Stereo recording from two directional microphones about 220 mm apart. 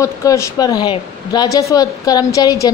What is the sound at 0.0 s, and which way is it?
A woman's voice, 15° left (ahead or behind).